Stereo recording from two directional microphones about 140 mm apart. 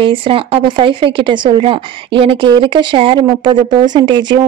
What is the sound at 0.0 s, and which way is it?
Speech, 40° right (ahead or behind).